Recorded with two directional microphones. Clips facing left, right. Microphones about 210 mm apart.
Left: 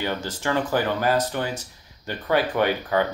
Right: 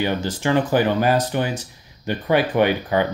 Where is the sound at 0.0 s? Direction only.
15° right (ahead or behind).